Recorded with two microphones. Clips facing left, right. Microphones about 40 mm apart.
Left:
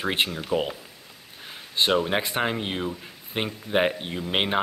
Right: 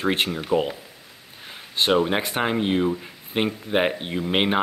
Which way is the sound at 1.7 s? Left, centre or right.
Centre.